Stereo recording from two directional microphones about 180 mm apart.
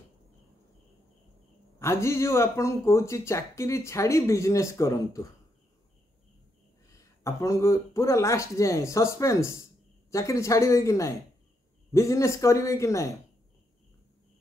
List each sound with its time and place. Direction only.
1.8 s speech: 15° left (ahead or behind)
6.9 s speech: 15° left (ahead or behind)